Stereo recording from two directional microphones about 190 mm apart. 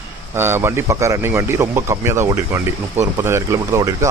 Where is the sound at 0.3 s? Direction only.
10° right (ahead or behind).